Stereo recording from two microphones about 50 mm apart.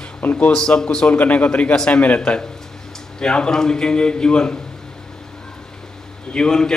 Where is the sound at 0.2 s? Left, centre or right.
Left.